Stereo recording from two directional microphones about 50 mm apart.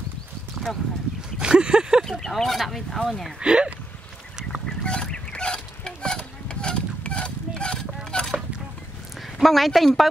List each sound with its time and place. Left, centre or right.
1.4 s a sound: centre
2.0 s speech: centre
3.3 s speech: centre
4.4 s goose: centre
4.8 s fowl: centre
9.4 s speech: centre